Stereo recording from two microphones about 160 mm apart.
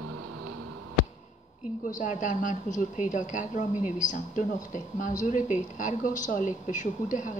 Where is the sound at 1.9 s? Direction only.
55° left (ahead or behind).